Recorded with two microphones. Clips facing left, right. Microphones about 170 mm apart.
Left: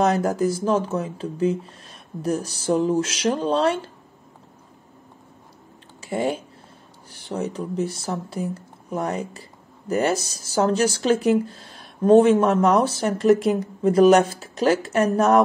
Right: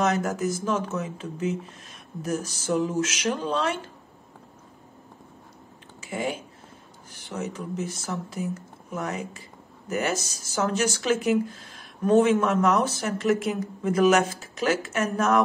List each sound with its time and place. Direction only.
0.0 s speech: 35° left (ahead or behind)
5.9 s speech: 35° left (ahead or behind)